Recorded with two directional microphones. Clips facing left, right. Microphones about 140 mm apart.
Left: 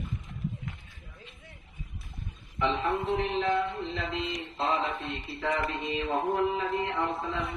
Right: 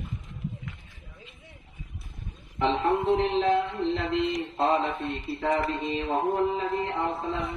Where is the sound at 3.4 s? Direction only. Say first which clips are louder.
Right 4 dB; 65° right (ahead or behind).